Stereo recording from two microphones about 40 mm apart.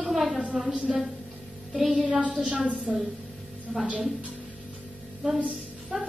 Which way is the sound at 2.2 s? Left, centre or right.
Right.